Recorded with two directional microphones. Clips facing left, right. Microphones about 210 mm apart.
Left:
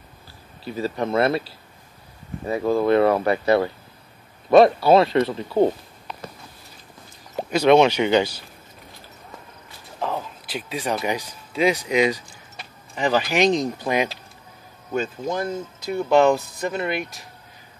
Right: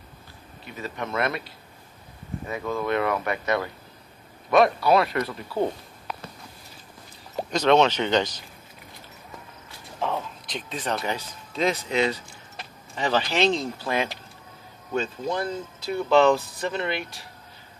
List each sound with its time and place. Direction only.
0.7 s speech: 35° left (ahead or behind)
7.3 s speech: 10° left (ahead or behind)
9.9 s speech: centre (ahead or behind)